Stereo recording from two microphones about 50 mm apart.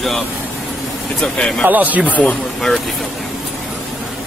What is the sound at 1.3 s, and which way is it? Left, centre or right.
Speech, centre.